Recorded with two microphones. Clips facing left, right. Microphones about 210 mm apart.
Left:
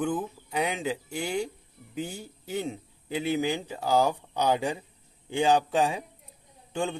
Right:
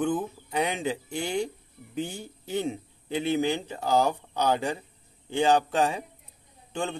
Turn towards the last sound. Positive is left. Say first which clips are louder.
# left 1 dB
turn(degrees=10)  # may be behind; listen again after turning